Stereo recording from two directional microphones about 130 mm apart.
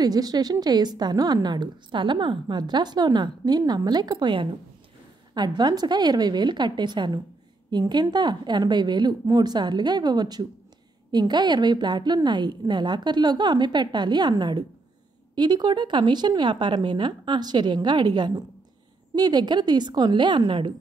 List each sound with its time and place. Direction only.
0.0 s a woman's voice: 30° right (ahead or behind)